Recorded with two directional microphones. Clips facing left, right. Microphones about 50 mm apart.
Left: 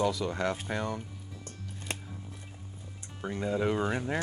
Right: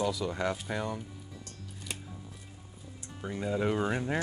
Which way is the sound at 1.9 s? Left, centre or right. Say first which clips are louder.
Left 4 dB; left.